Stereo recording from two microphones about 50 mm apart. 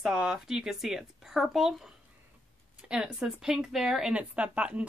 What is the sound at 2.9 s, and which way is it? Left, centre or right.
Speech, centre.